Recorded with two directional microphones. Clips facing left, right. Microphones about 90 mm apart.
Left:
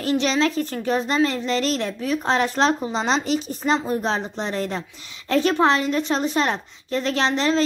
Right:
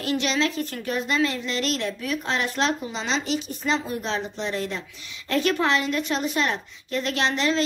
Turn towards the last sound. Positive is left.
turn(degrees=35)  # may be behind; listen again after turning